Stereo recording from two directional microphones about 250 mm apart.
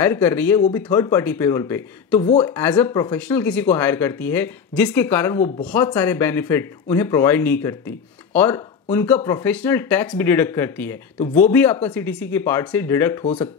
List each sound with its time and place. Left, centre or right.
0.0 s speech: centre
2.2 s speech: left
2.5 s speech: centre